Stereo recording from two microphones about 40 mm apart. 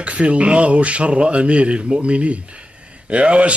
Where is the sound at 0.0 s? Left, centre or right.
Right.